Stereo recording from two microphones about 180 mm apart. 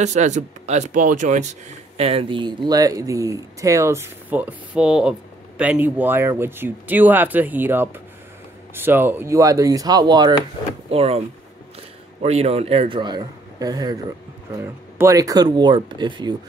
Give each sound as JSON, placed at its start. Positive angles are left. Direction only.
{"t": 0.0, "sound": "speech", "side_deg": -40}
{"t": 2.0, "sound": "speech", "side_deg": -30}
{"t": 10.9, "sound": "speech", "side_deg": -35}